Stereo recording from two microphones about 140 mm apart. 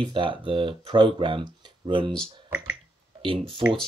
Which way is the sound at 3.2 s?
40° right (ahead or behind).